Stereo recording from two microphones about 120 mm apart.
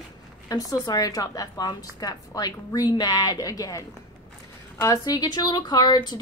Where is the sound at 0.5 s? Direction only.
30° left (ahead or behind).